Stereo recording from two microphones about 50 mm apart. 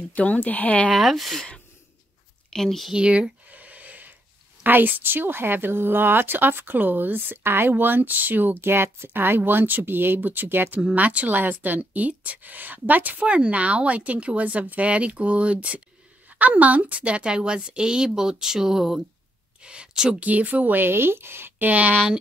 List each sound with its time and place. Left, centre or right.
0.1 s speech: left
0.9 s speech: centre
2.5 s speech: centre
2.9 s a sound: right
4.6 s a woman's voice: right; by 18.9 s centre
19.6 s a sound: centre
20.2 s speech: right
20.9 s speech: right